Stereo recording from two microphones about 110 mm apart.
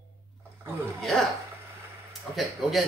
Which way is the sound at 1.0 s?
Centre (ahead or behind).